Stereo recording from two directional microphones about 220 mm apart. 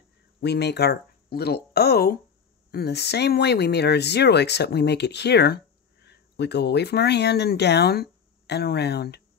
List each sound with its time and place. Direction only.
0.4 s speech: 50° left (ahead or behind)